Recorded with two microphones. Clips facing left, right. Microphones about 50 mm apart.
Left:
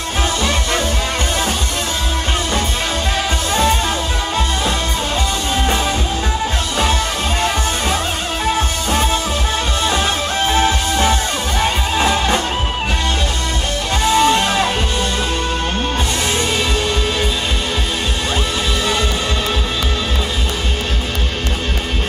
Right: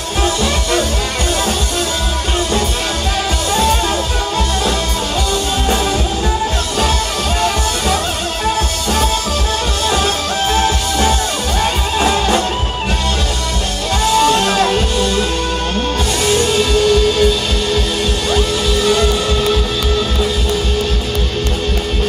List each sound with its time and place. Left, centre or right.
8.5 s music: left
10.5 s music: left
14.1 s music: left
16.3 s music: left